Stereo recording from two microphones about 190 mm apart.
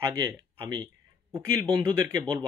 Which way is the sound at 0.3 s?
20° right (ahead or behind).